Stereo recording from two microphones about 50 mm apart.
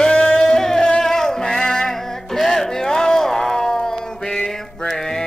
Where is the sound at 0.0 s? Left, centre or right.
Centre.